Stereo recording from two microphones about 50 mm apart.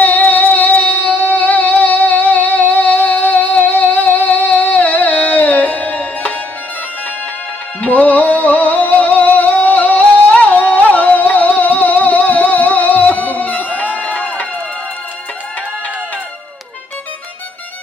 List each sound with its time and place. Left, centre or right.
0.0 s music: left
7.8 s music: left